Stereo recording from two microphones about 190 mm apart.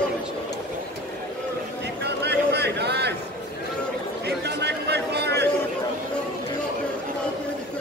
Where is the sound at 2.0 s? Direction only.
60° right (ahead or behind).